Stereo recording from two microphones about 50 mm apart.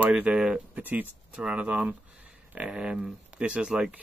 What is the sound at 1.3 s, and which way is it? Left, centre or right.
Speech, centre.